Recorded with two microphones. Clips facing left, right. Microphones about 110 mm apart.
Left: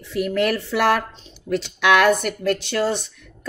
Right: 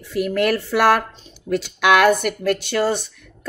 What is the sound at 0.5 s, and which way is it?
Speech, 50° right (ahead or behind).